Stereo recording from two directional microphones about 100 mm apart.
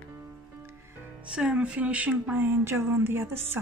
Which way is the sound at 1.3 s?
10° right (ahead or behind).